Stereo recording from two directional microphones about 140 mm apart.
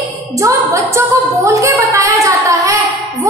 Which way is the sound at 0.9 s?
20° right (ahead or behind).